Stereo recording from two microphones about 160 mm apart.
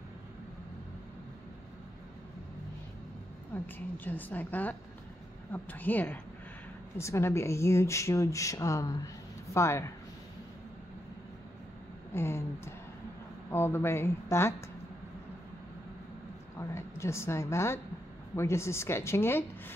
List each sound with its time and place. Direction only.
3.5 s speech: 10° left (ahead or behind)
12.1 s a sound: 15° left (ahead or behind)
13.5 s speech: 15° left (ahead or behind)
16.5 s a woman's voice: 15° left (ahead or behind)